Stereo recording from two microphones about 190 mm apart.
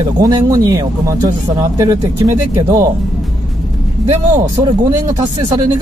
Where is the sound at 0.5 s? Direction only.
20° right (ahead or behind).